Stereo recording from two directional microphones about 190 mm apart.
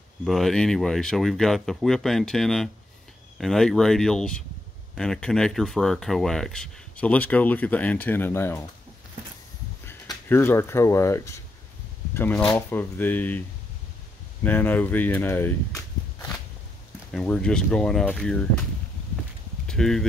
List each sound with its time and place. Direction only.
0.2 s speech: centre (ahead or behind)
9.8 s speech: 10° left (ahead or behind)
14.4 s speech: 10° left (ahead or behind)
17.1 s speech: 5° left (ahead or behind)
19.7 s speech: 5° left (ahead or behind)